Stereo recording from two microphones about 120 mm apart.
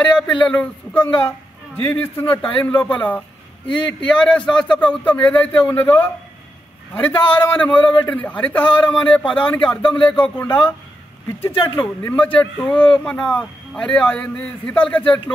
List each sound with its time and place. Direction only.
0.4 s a man's voice: 10° left (ahead or behind)
11.5 s speech: 40° left (ahead or behind)
11.8 s a man's voice: 10° left (ahead or behind)